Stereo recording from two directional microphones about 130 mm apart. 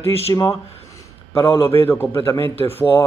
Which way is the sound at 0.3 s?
25° left (ahead or behind).